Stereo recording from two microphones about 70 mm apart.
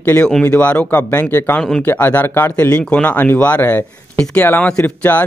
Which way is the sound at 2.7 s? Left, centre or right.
Centre.